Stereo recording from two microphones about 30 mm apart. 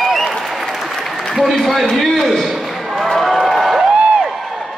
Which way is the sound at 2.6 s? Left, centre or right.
Centre.